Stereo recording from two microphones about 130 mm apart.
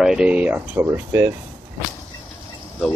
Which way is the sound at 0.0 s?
5° right (ahead or behind).